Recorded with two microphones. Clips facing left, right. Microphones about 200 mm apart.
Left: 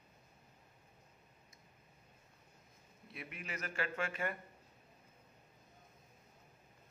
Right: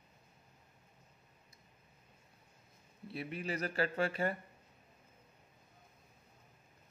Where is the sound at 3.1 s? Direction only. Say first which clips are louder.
Right 8 dB; 35° right (ahead or behind).